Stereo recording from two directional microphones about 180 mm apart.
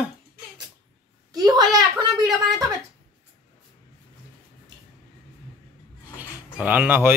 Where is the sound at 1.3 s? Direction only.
20° right (ahead or behind).